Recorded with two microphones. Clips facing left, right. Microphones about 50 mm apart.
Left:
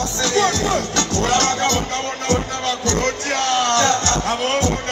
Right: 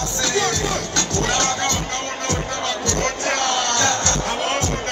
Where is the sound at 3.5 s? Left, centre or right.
Left.